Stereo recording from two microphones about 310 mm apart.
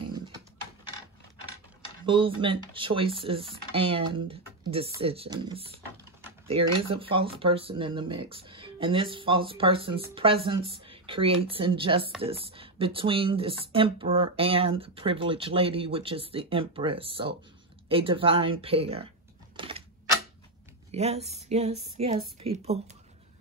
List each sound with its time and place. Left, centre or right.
2.0 s speech: centre
6.8 s speech: centre
19.5 s a sound: centre
20.9 s speech: right